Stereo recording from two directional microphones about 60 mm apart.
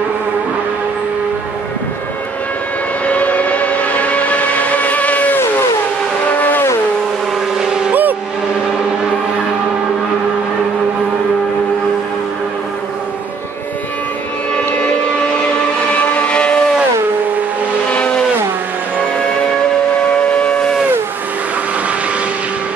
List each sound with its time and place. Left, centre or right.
3.1 s train: left
6.3 s vehicle: left
7.9 s vehicle: right
16.1 s music: left
17.9 s vehicle: centre
20.1 s train: left